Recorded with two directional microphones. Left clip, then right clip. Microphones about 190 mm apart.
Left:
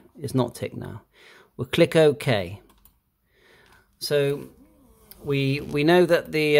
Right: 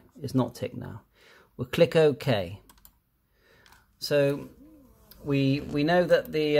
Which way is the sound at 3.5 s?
15° left (ahead or behind).